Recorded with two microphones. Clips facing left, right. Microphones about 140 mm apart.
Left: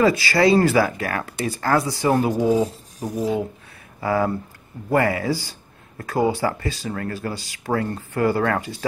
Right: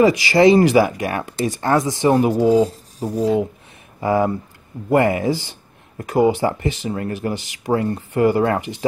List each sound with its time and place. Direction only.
0.0 s speech: 15° right (ahead or behind)